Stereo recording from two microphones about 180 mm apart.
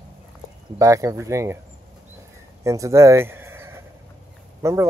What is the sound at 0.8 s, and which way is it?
Speech, 20° right (ahead or behind).